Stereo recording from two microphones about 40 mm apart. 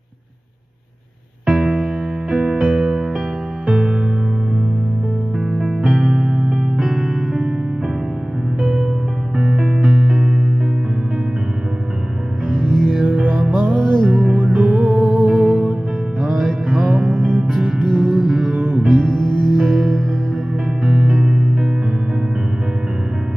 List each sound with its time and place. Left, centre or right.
1.4 s music: centre
5.4 s music: centre
8.5 s music: centre
12.8 s music: centre
14.1 s music: right
16.2 s music: centre
18.5 s music: right
18.8 s music: centre
19.0 s music: centre
19.6 s music: centre